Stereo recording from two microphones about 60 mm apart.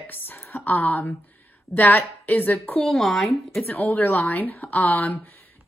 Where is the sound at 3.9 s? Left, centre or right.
Left.